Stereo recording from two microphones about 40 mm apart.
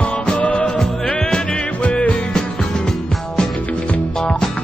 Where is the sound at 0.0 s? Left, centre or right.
Left.